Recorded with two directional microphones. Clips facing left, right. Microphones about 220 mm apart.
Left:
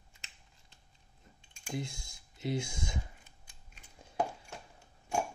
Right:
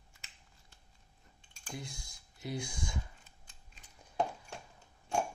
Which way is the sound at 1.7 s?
25° left (ahead or behind).